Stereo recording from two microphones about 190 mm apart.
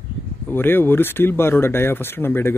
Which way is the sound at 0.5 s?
10° left (ahead or behind).